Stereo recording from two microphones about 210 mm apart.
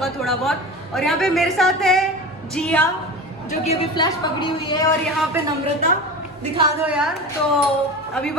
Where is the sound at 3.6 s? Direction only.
30° left (ahead or behind).